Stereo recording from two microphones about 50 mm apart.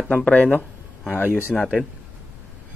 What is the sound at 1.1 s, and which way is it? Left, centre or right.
Speech, left.